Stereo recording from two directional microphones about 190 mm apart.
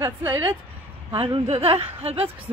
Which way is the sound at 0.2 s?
10° right (ahead or behind).